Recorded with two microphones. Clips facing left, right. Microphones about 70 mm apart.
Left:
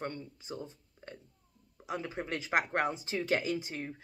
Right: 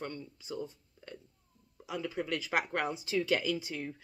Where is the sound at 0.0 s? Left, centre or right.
Left.